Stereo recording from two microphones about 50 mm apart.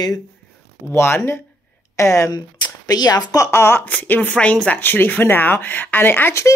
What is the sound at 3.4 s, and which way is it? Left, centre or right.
Speech, left.